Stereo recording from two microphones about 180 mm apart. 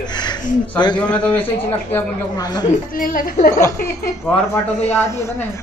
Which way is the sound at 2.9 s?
50° left (ahead or behind).